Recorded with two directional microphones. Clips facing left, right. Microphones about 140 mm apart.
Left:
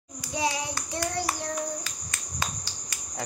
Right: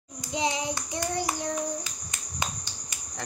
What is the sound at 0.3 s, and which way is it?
Child singing, 20° right (ahead or behind).